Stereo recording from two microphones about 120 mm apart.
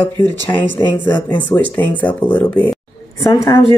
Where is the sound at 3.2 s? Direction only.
25° left (ahead or behind).